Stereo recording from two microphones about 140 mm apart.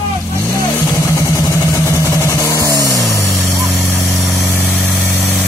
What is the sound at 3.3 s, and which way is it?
Vehicle, centre (ahead or behind).